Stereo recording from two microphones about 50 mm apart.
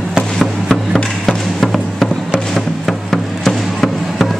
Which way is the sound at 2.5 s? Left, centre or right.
Centre.